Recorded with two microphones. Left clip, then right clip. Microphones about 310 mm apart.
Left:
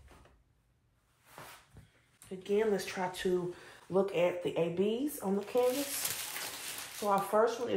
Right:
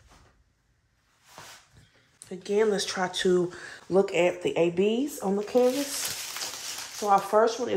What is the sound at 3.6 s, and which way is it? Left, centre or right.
Speech, right.